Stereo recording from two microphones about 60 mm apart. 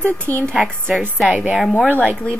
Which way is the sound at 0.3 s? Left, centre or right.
Left.